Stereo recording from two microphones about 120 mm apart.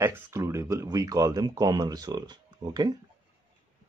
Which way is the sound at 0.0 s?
20° right (ahead or behind).